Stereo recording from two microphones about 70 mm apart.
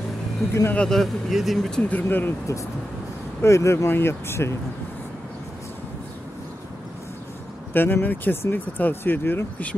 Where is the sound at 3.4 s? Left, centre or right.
Left.